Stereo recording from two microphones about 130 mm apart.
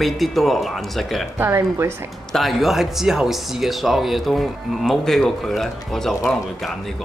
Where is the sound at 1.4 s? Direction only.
20° right (ahead or behind).